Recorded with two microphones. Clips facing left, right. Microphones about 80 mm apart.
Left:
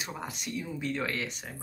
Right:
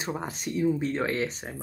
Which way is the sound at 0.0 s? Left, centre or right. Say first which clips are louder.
Right 6 dB; right.